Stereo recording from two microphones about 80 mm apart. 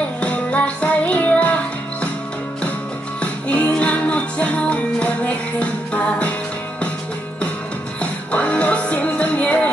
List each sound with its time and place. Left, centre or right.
0.2 s music: centre
3.2 s music: centre
8.0 s music: centre